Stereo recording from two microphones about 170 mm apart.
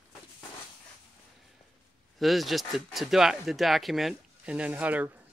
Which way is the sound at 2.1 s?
Centre (ahead or behind).